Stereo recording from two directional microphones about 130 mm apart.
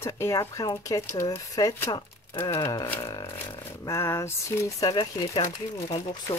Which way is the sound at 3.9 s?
25° left (ahead or behind).